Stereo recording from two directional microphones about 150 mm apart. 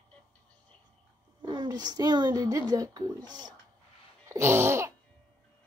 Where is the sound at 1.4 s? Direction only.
30° right (ahead or behind).